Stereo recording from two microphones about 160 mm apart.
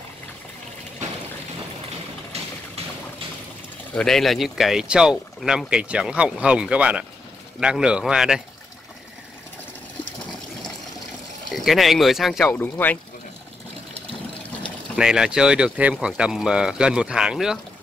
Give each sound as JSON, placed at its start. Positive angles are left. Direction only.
{"t": 3.9, "sound": "speech", "side_deg": 5}
{"t": 11.5, "sound": "speech", "side_deg": 0}
{"t": 12.4, "sound": "speech", "side_deg": 10}
{"t": 15.0, "sound": "speech", "side_deg": -5}